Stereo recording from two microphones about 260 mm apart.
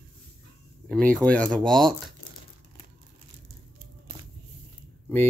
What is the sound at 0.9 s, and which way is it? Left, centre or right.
Speech, centre.